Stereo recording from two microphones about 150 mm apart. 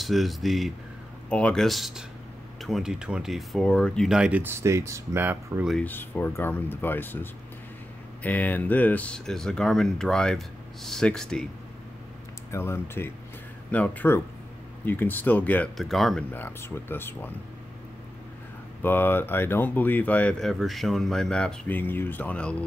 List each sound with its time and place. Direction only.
0.0 s speech: centre (ahead or behind)
5.7 s speech: 10° left (ahead or behind)
12.4 s speech: 15° left (ahead or behind); by 16.3 s centre (ahead or behind)
16.3 s speech: 15° left (ahead or behind)
18.8 s speech: 15° left (ahead or behind)